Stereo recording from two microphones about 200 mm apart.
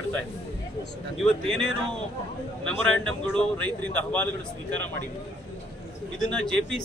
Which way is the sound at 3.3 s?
5° left (ahead or behind).